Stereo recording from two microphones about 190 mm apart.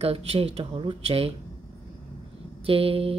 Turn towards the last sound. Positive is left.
turn(degrees=-30)  # may be behind; listen again after turning